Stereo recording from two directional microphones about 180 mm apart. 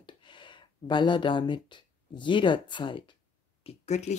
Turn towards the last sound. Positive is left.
turn(degrees=40)  # may be behind; listen again after turning